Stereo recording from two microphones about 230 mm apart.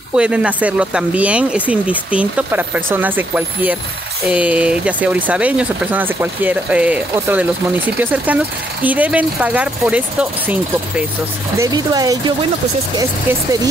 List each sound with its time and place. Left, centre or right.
0.1 s speech: centre